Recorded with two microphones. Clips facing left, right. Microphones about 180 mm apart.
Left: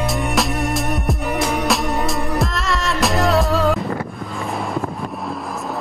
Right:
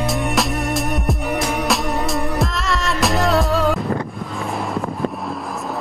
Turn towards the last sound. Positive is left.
turn(degrees=0)  # may be behind; listen again after turning